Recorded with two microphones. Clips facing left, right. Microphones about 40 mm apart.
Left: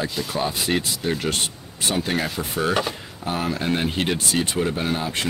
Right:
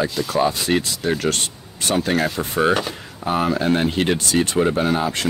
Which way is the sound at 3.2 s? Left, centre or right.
Centre.